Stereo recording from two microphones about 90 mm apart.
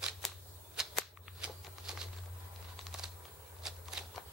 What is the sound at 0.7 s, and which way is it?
Whip, centre (ahead or behind).